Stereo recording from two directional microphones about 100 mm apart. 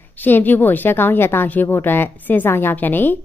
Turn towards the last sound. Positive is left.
turn(degrees=20)  # may be behind; listen again after turning